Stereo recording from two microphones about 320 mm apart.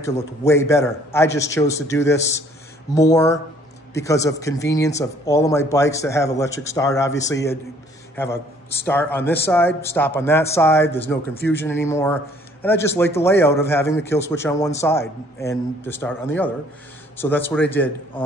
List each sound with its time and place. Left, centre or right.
0.4 s a man's voice: centre